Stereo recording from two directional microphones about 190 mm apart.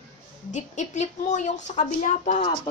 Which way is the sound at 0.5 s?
40° left (ahead or behind).